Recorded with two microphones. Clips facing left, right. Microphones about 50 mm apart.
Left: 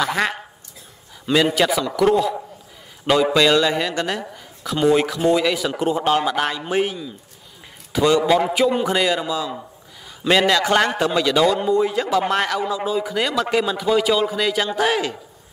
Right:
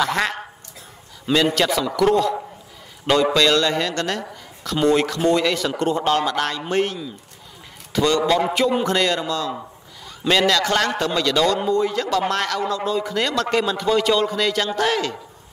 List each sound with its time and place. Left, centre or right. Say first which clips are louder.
0.0 s a sound: even; centre
1.3 s a man's voice: left 1 dB; centre
3.3 s a man's voice: left 1 dB; centre